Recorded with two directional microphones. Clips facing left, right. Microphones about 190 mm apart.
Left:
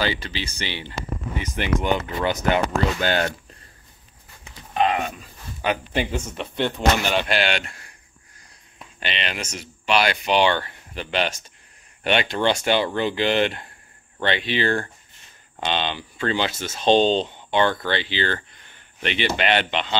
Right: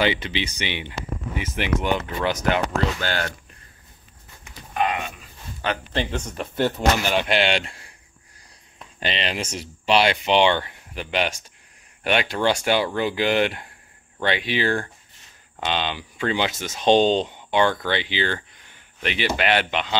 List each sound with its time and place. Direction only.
0.4 s speech: 20° right (ahead or behind); by 2.6 s centre (ahead or behind)
3.0 s speech: 20° left (ahead or behind)
5.6 s speech: 10° left (ahead or behind); by 7.8 s 25° right (ahead or behind)
9.0 s speech: 30° right (ahead or behind); by 20.0 s 10° right (ahead or behind)